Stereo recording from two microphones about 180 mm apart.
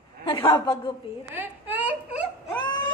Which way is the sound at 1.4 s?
10° right (ahead or behind).